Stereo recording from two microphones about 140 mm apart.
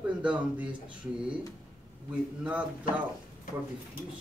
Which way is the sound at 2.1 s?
10° right (ahead or behind).